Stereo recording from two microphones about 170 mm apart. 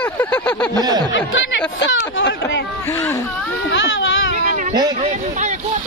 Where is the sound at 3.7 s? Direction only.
90° left.